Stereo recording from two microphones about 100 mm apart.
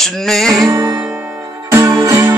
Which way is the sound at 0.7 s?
45° right (ahead or behind).